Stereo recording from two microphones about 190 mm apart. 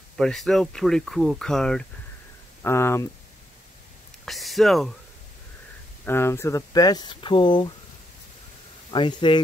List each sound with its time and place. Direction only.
0.2 s speech: 5° left (ahead or behind)
2.6 s speech: 15° left (ahead or behind)
4.3 s speech: centre (ahead or behind)
6.0 s speech: 10° left (ahead or behind)
8.9 s speech: 25° left (ahead or behind)